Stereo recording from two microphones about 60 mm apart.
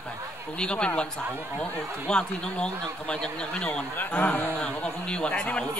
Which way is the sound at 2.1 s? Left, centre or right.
Centre.